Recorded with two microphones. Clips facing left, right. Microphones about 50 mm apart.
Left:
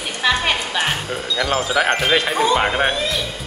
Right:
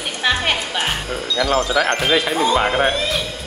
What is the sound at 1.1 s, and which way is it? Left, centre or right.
Speech, centre.